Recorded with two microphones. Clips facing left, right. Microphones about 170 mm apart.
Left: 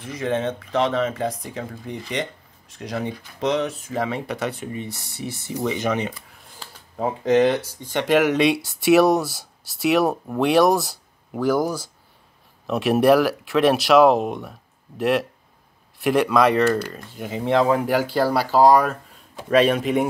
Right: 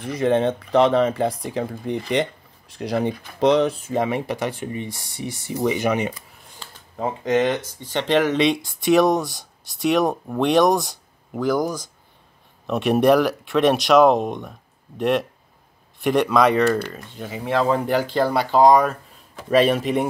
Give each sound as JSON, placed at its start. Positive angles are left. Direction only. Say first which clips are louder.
{"t": 0.1, "sound": "speech", "louder": "right 5 dB", "side_deg": -30}
{"t": 6.6, "sound": "a sound", "louder": "left 1 dB", "side_deg": 10}
{"t": 7.3, "sound": "speech", "louder": "left 2 dB", "side_deg": 10}
{"t": 17.2, "sound": "speech", "louder": "left 2 dB", "side_deg": 15}